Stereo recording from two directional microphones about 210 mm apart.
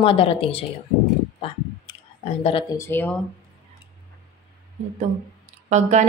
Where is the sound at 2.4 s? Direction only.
25° left (ahead or behind).